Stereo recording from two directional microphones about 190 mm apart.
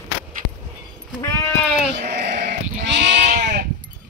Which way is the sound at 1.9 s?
60° right (ahead or behind).